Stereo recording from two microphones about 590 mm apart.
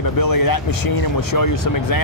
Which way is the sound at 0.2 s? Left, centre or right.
Left.